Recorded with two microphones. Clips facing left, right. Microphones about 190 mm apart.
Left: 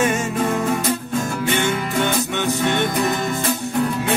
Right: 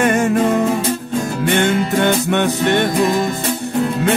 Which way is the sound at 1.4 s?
60° right (ahead or behind).